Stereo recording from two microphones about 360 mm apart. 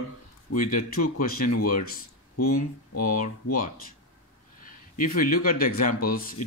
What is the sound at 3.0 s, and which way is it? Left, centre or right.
A man's voice, left.